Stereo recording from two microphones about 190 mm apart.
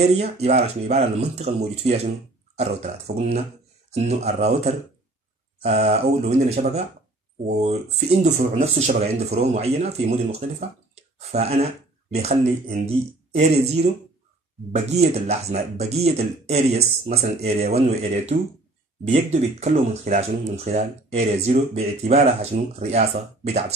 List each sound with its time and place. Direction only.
0.0 s speech: 35° right (ahead or behind)
15.1 s speech: 35° right (ahead or behind)